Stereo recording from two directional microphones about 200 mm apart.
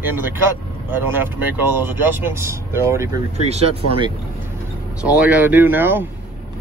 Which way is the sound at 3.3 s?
30° right (ahead or behind).